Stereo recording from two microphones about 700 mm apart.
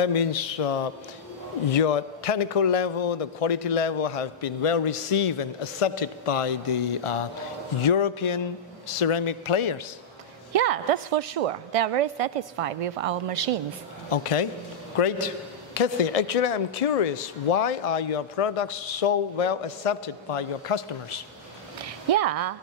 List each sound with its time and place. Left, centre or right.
0.0 s a man's voice: left
10.5 s a woman's voice: right
14.1 s a man's voice: left
21.8 s speech: right